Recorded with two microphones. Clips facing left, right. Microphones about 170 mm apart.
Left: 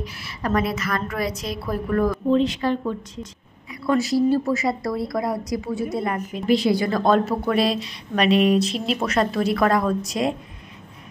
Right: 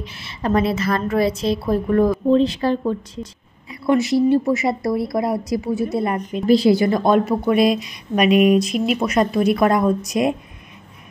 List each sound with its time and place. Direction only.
0.0 s a woman's voice: 25° right (ahead or behind)
3.8 s a woman's voice: 20° right (ahead or behind)